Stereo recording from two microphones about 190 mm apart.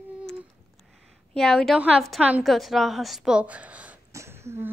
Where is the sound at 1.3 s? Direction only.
5° left (ahead or behind).